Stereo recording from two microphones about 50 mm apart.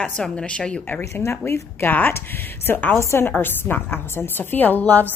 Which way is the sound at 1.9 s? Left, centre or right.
Left.